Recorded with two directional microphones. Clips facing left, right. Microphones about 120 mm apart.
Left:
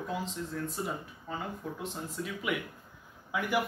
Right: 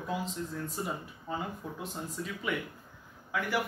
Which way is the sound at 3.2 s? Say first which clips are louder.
Left 1 dB; 15° left (ahead or behind).